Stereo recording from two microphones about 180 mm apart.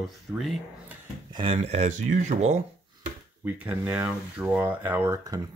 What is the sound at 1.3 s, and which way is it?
Speech, 30° right (ahead or behind).